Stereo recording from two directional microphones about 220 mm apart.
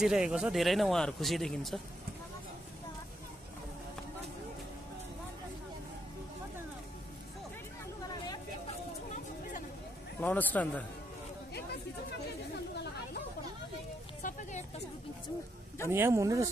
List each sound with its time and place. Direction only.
0.0 s speech: 5° right (ahead or behind)
10.2 s a man's voice: 5° left (ahead or behind)
14.2 s a sound: 35° left (ahead or behind)
15.9 s speech: 10° right (ahead or behind)